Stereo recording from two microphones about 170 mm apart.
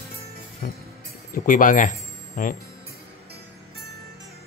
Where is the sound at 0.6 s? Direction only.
55° left (ahead or behind).